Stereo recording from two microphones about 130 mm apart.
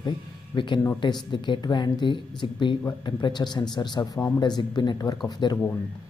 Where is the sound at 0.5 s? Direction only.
35° left (ahead or behind).